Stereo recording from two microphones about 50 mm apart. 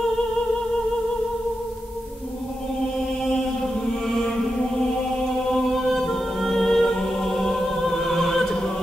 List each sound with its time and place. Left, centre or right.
5.5 s choir: centre